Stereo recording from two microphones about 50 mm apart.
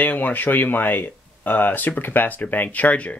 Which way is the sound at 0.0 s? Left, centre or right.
Left.